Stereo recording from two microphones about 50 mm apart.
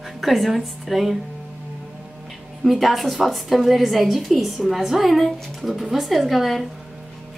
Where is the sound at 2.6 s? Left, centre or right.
Centre.